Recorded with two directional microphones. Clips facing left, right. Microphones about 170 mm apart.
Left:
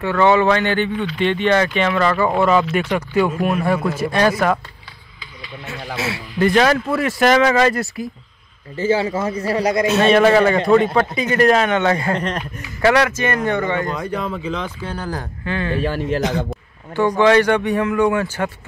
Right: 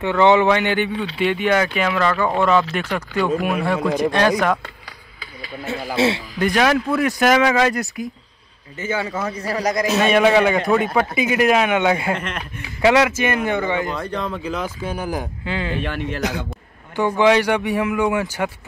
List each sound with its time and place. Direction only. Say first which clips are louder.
0.0 s speech: even; 20° right (ahead or behind); by 4.3 s 5° left (ahead or behind)
5.9 s a man's voice: right 8 dB; 30° right (ahead or behind)
6.3 s speech: left 6 dB; centre (ahead or behind)
8.7 s speech: left 6 dB; 30° left (ahead or behind)
9.8 s speech: left 2 dB; centre (ahead or behind)
12.2 s speech: left 5 dB; 35° left (ahead or behind)
12.8 s speech: even; 15° right (ahead or behind)
13.9 s speech: left 1 dB; 5° left (ahead or behind)
14.8 s speech: right 2 dB; 10° right (ahead or behind)
15.8 s speech: left 5 dB; 40° left (ahead or behind)
17.2 s speech: left 2 dB; 15° right (ahead or behind)